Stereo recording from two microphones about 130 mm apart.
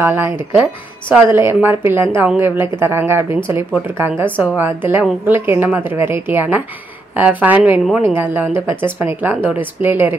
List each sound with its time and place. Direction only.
0.0 s a woman's voice: 20° right (ahead or behind)